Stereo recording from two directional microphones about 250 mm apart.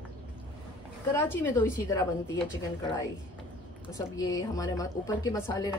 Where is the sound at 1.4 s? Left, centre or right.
Centre.